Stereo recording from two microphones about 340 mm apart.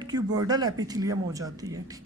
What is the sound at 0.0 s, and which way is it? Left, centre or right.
Speech, centre.